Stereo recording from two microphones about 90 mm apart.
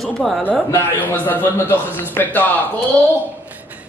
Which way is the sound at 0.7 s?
25° left (ahead or behind).